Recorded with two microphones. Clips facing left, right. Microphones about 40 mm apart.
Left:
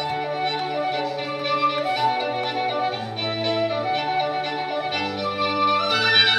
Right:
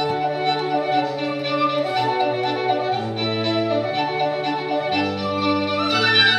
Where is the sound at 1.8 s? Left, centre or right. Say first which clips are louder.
Right 2 dB; centre.